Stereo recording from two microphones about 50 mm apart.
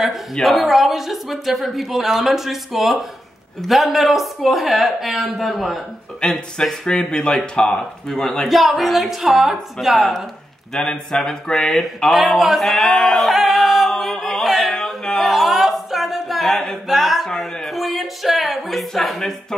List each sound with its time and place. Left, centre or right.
0.0 s a woman's voice: centre
6.9 s speech: centre
8.5 s a woman's voice: centre
10.7 s a woman's voice: centre
12.9 s singing: centre
14.2 s a sound: centre
15.2 s a capella: centre
17.6 s music: centre